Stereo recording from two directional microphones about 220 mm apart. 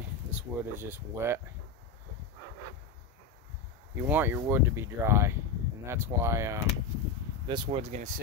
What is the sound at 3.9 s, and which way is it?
Speech, 10° right (ahead or behind).